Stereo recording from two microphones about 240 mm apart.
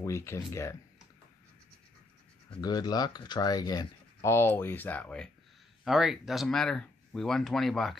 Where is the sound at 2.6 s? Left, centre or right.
Centre.